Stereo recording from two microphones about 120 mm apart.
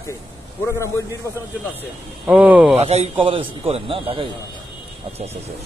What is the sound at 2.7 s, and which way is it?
Speech, 60° right (ahead or behind).